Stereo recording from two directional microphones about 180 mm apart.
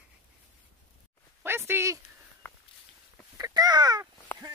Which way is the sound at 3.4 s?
20° right (ahead or behind).